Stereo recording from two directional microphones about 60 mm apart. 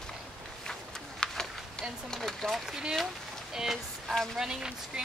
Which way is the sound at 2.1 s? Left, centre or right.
Centre.